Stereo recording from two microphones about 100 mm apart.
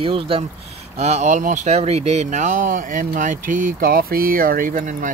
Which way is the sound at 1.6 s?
90° right.